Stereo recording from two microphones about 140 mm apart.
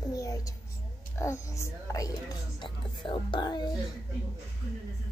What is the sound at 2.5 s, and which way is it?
Speech, 35° left (ahead or behind).